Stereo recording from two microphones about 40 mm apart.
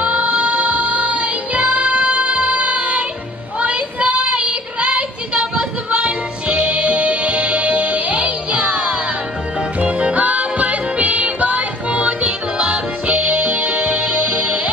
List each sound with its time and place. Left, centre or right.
0.0 s music: right
3.5 s child singing: right
9.8 s music: right